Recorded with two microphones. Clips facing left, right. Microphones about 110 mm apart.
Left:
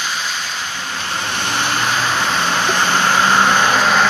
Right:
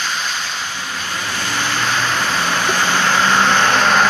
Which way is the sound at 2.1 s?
Centre (ahead or behind).